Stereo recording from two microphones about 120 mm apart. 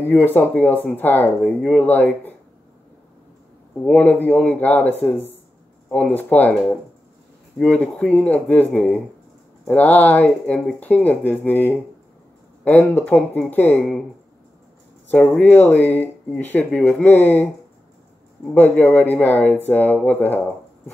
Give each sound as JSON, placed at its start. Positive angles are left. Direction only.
{"t": 0.0, "sound": "speech", "side_deg": 15}
{"t": 3.7, "sound": "speech", "side_deg": 10}
{"t": 7.5, "sound": "speech", "side_deg": 10}
{"t": 15.0, "sound": "speech", "side_deg": 10}
{"t": 18.5, "sound": "speech", "side_deg": 15}